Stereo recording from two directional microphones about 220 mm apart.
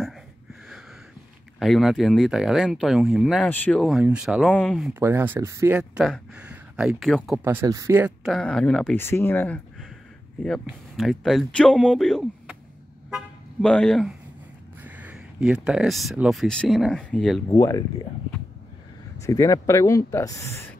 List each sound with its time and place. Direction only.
1.6 s speech: centre (ahead or behind)
7.4 s speech: 15° right (ahead or behind)
8.3 s speech: 5° left (ahead or behind)
13.1 s toot: 5° left (ahead or behind)
14.8 s speech: 5° right (ahead or behind)
17.5 s speech: 15° left (ahead or behind)
19.2 s speech: 15° left (ahead or behind)